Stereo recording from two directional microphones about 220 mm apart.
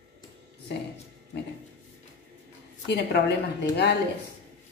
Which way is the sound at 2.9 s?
50° left (ahead or behind).